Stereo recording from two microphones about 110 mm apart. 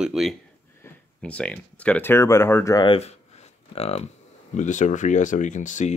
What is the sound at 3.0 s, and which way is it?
Speech, 80° left.